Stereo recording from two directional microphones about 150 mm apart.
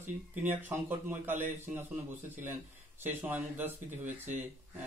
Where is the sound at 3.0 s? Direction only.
15° right (ahead or behind).